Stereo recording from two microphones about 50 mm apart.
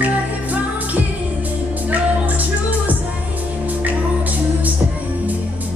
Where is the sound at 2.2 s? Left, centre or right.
Right.